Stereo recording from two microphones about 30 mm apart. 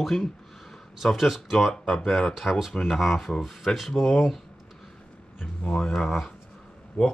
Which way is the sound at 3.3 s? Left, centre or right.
Centre.